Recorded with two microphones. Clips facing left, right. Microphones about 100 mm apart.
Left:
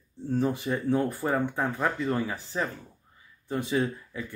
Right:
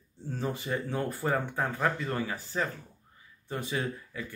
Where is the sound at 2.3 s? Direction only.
10° left (ahead or behind).